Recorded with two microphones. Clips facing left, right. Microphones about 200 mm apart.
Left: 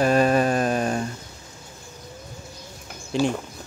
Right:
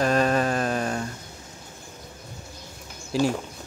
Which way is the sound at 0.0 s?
10° left (ahead or behind).